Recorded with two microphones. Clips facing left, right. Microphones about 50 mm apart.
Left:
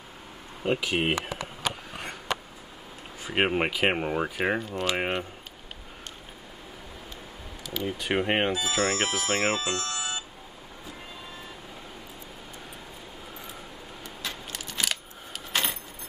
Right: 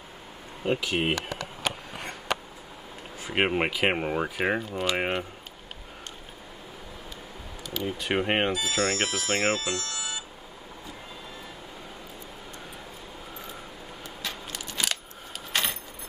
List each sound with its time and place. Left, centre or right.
0.7 s speech: centre
3.3 s speech: centre
7.6 s speech: centre
8.8 s speech: left
9.6 s music: left
14.0 s a sound: centre
15.5 s keys jangling: centre